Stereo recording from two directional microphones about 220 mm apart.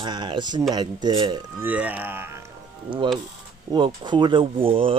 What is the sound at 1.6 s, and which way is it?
Speech, 5° right (ahead or behind).